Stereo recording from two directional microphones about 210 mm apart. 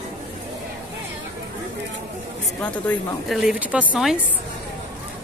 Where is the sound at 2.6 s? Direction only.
5° left (ahead or behind).